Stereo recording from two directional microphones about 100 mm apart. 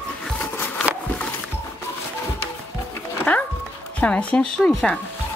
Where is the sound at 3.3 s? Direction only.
15° left (ahead or behind).